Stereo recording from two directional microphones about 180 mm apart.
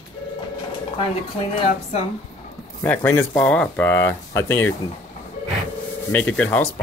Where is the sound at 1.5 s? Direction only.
35° left (ahead or behind).